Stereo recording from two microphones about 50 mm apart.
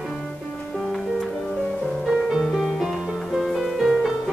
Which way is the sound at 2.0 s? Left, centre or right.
Centre.